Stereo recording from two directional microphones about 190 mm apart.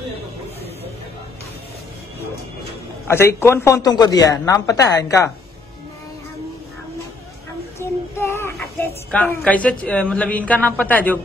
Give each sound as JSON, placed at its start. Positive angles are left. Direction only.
{"t": 3.1, "sound": "a man's voice", "side_deg": 15}
{"t": 7.8, "sound": "child singing", "side_deg": 15}
{"t": 8.5, "sound": "a woman's voice", "side_deg": 5}